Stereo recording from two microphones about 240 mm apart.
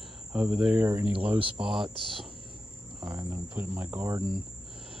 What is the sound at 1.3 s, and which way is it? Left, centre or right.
Speech, right.